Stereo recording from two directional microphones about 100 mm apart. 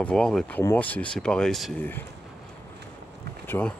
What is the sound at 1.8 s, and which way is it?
Speech, 20° left (ahead or behind).